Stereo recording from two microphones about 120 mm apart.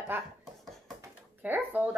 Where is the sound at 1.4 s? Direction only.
15° right (ahead or behind).